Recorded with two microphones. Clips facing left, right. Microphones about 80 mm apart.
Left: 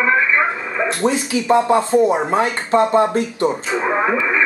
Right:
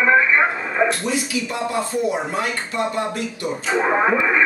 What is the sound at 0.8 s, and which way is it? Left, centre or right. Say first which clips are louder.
Speech: left 4 dB; left.